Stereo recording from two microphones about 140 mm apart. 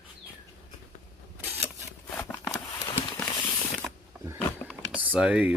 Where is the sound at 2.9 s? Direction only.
35° left (ahead or behind).